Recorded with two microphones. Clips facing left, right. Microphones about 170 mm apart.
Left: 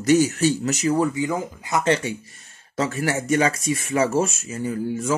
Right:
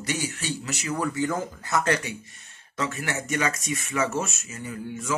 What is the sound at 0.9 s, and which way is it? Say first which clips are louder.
Speech: left 5 dB; 20° left (ahead or behind).